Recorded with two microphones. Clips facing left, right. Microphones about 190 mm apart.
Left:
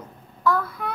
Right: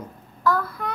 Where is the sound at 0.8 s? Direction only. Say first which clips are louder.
Even; centre (ahead or behind).